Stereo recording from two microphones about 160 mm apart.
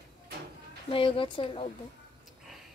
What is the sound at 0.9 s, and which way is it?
Speech, 35° left (ahead or behind).